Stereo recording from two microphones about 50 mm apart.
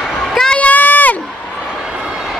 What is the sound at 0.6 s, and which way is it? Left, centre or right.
Run, left.